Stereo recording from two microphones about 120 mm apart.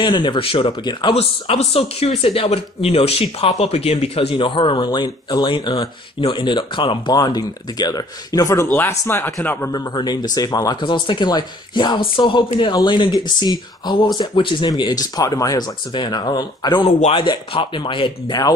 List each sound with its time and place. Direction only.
0.0 s speech: 40° left (ahead or behind)
1.1 s speech: 60° left (ahead or behind); by 8.6 s 30° left (ahead or behind)
8.6 s speech: 20° left (ahead or behind)
9.7 s speech: 35° left (ahead or behind)